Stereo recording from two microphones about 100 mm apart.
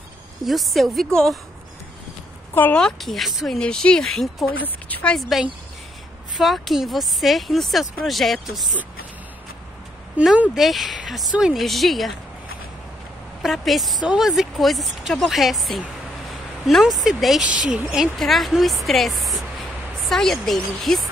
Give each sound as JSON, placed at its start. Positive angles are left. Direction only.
{"t": 0.5, "sound": "speech", "side_deg": 0}
{"t": 2.5, "sound": "a woman's voice", "side_deg": 20}
{"t": 2.8, "sound": "a woman's voice", "side_deg": 0}
{"t": 6.3, "sound": "speech", "side_deg": 0}
{"t": 10.1, "sound": "a woman's voice", "side_deg": -10}
{"t": 13.4, "sound": "a woman's voice", "side_deg": 0}